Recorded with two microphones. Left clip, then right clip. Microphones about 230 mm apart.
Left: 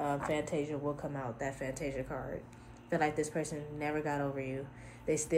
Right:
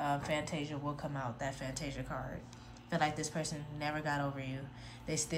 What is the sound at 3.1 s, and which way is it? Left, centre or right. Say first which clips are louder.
Speech: left 4 dB; right.